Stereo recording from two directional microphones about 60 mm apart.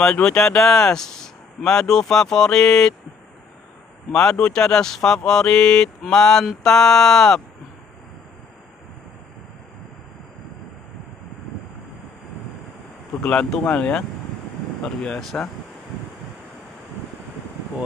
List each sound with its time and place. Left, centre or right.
0.0 s speech: centre
4.1 s speech: centre
13.2 s speech: centre